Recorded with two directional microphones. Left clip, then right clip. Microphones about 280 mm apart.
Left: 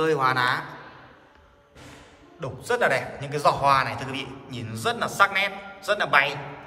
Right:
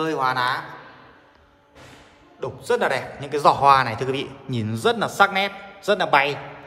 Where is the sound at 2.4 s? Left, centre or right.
Centre.